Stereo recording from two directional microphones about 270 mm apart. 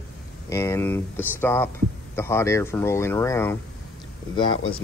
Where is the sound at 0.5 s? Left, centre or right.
Centre.